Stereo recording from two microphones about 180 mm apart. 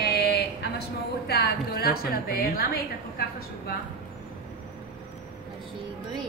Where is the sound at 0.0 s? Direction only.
65° left (ahead or behind).